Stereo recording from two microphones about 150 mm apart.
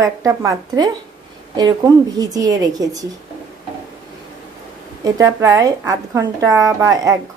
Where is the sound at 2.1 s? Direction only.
25° right (ahead or behind).